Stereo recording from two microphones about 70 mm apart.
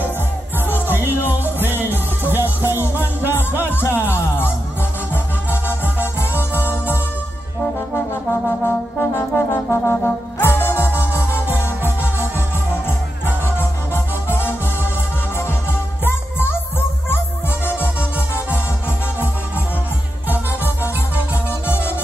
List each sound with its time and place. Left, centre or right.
0.7 s music: left
1.6 s music: right
3.6 s music: left
7.9 s brass instrument: left
16.0 s music: left
17.6 s music: left